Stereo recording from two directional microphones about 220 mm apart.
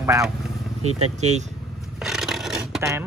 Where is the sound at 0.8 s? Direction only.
30° right (ahead or behind).